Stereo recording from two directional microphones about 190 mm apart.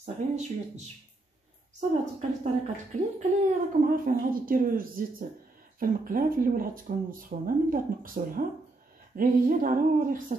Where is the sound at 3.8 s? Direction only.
50° right (ahead or behind).